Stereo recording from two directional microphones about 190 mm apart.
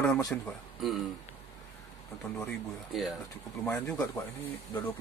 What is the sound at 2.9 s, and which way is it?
Speech, centre (ahead or behind).